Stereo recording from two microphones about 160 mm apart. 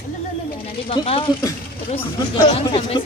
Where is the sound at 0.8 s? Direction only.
35° left (ahead or behind).